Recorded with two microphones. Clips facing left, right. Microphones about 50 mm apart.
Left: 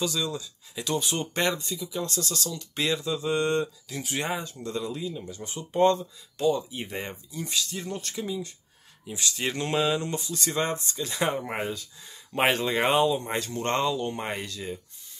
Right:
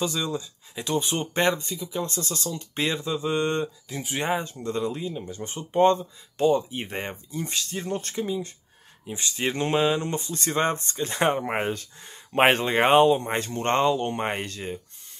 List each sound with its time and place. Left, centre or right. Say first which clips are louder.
0.0 s speech: right 2 dB; right